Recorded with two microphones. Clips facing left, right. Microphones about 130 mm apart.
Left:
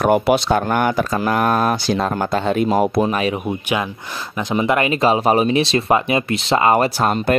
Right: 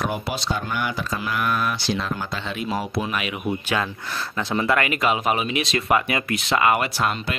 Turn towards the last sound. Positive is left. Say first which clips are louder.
# left 8 dB
turn(degrees=40)  # may be behind; listen again after turning